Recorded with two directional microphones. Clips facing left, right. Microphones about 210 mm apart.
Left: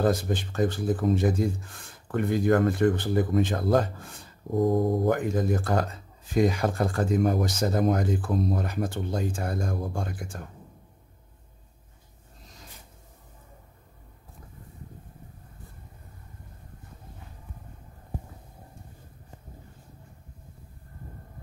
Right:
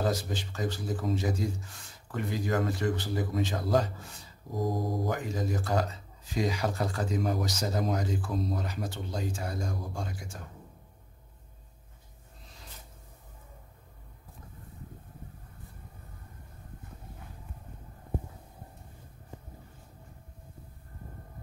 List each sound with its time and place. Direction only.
0.0 s speech: 55° left (ahead or behind)